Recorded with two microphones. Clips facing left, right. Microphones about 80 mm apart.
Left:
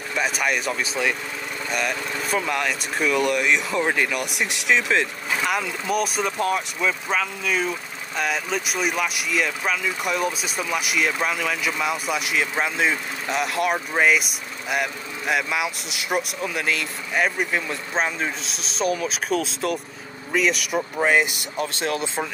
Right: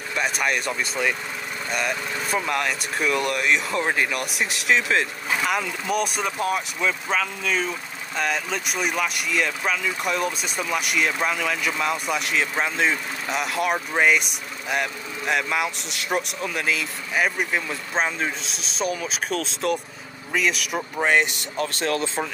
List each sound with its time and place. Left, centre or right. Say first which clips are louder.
0.1 s speech: left 1 dB; centre
21.5 s speech: right 1 dB; centre